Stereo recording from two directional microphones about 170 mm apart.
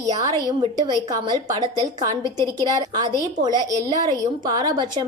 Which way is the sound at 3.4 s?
25° right (ahead or behind).